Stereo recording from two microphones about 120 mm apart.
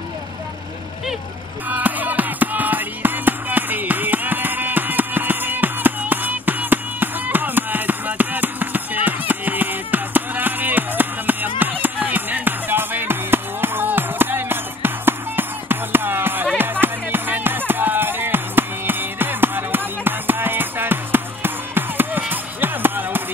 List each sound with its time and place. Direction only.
1.7 s music: 15° right (ahead or behind)